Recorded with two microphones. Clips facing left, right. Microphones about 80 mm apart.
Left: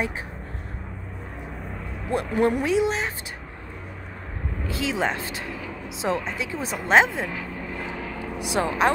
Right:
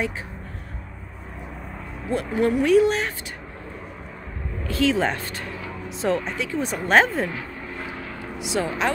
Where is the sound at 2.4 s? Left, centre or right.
Left.